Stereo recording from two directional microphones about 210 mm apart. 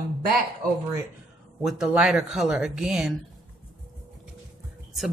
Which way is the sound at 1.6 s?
5° right (ahead or behind).